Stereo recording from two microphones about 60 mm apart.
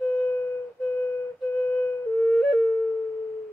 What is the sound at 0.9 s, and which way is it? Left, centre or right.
Flute, left.